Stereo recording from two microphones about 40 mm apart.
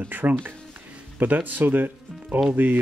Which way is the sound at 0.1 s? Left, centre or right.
Right.